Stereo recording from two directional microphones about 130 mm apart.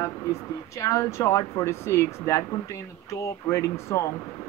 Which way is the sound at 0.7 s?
25° left (ahead or behind).